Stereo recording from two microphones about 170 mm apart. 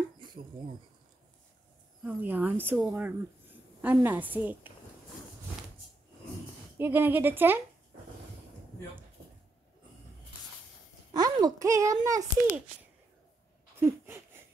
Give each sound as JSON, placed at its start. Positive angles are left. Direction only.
{"t": 0.2, "sound": "chopping", "side_deg": -25}
{"t": 2.0, "sound": "a woman's voice", "side_deg": -10}
{"t": 6.8, "sound": "a woman's voice", "side_deg": -10}
{"t": 11.1, "sound": "a child's voice", "side_deg": -20}
{"t": 13.7, "sound": "a sound", "side_deg": -15}